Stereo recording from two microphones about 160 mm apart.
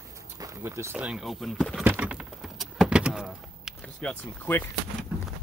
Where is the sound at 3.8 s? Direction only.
10° left (ahead or behind).